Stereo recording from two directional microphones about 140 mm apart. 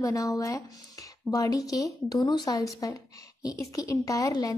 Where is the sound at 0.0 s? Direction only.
25° left (ahead or behind).